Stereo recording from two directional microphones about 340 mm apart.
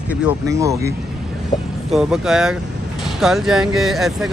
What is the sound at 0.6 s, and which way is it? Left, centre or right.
Speech, centre.